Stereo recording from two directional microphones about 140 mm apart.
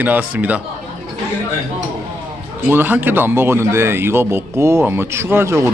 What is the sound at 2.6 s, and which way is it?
Speech, 15° right (ahead or behind).